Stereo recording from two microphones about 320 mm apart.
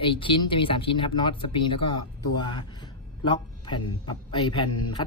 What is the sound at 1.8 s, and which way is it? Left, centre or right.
Speech, left.